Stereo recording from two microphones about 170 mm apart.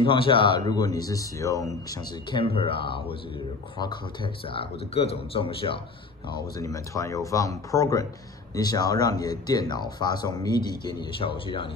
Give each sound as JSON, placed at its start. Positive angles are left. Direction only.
{"t": 0.0, "sound": "speech", "side_deg": 30}
{"t": 6.6, "sound": "speech", "side_deg": 20}